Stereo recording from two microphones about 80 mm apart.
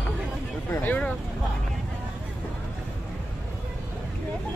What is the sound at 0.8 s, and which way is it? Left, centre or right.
Vehicle, centre.